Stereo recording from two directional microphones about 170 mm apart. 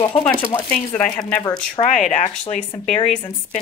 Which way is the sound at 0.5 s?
10° left (ahead or behind).